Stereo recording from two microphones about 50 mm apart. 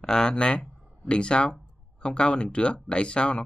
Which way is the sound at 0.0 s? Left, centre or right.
Centre.